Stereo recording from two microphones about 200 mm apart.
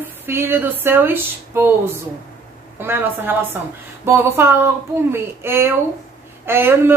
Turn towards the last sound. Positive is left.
turn(degrees=-10)  # may be behind; listen again after turning